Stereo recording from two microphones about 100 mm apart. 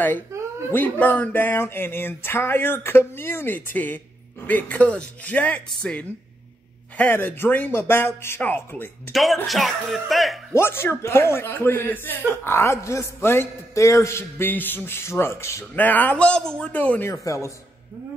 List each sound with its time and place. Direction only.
0.3 s a sound: 30° right (ahead or behind)
0.7 s speech: 20° left (ahead or behind)
9.1 s speech: centre (ahead or behind)
10.5 s speech: 25° left (ahead or behind)
15.7 s speech: 15° left (ahead or behind)
17.1 s speech: 30° left (ahead or behind)